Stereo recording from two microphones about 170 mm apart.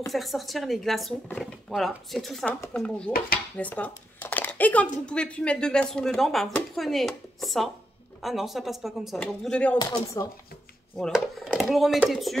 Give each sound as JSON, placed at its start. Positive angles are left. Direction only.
{"t": 0.1, "sound": "speech", "side_deg": 0}
{"t": 9.8, "sound": "speech", "side_deg": 25}
{"t": 11.0, "sound": "speech", "side_deg": 0}